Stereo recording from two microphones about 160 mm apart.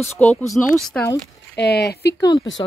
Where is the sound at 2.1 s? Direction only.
25° left (ahead or behind).